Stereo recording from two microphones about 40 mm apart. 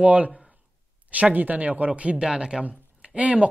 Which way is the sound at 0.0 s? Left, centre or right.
Right.